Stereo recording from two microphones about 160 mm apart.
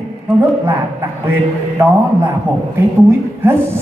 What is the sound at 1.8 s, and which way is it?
Speech, 15° right (ahead or behind).